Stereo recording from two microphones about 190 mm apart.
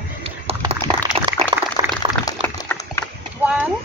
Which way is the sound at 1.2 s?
30° right (ahead or behind).